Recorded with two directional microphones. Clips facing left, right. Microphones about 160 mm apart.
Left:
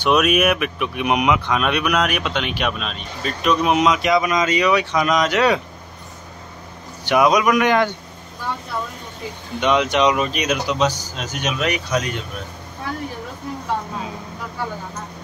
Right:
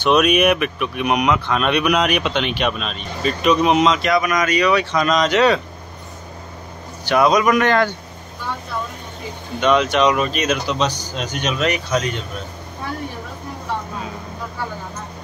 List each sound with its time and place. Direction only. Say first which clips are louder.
0.0 s speech: right 2 dB; 5° left (ahead or behind)
0.7 s speech: right 1 dB; 15° left (ahead or behind)
7.1 s speech: right 1 dB; 10° left (ahead or behind)
9.6 s speech: right 1 dB; 15° left (ahead or behind)